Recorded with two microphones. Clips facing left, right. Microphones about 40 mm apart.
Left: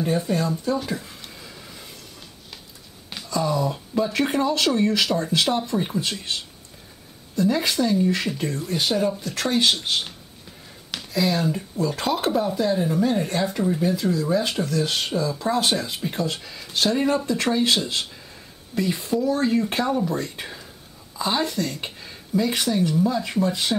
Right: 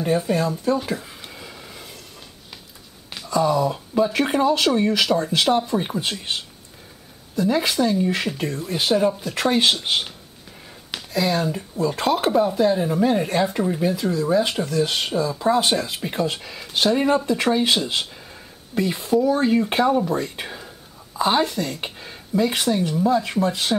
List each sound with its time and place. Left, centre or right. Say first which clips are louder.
0.0 s a sound: right 2 dB; centre
3.3 s speech: right 4 dB; centre
7.3 s speech: right 1 dB; centre
16.0 s speech: right 2 dB; centre
18.8 s speech: right 3 dB; centre
21.5 s speech: even; centre